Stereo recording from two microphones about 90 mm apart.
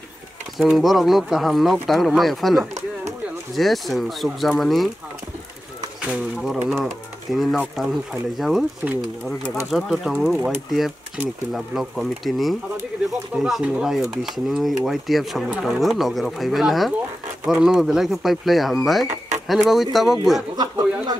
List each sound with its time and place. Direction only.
0.6 s speech: centre (ahead or behind)
6.0 s speech: 5° right (ahead or behind)
9.7 s speech: centre (ahead or behind)
11.5 s speech: 5° right (ahead or behind)
20.5 s a sound: 45° right (ahead or behind)